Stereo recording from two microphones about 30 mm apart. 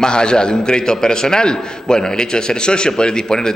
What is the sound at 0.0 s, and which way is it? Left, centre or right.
A man's voice, left.